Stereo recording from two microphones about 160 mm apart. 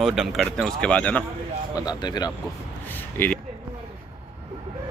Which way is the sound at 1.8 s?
25° left (ahead or behind).